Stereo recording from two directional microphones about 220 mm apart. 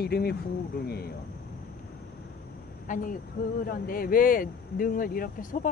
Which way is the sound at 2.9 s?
35° left (ahead or behind).